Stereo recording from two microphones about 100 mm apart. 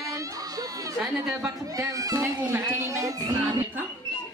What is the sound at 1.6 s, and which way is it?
Speech, 35° right (ahead or behind).